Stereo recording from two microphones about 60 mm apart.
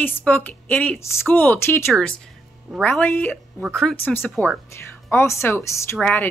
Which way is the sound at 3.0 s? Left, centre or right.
Left.